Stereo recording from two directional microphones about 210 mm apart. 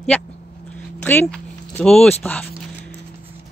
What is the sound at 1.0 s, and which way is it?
Speech, 5° left (ahead or behind).